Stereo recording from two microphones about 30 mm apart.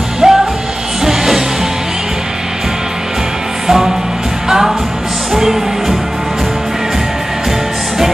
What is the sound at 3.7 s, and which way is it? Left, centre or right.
Music, centre.